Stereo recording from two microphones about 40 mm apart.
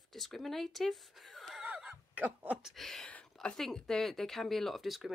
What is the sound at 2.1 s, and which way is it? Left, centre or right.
Speech, right.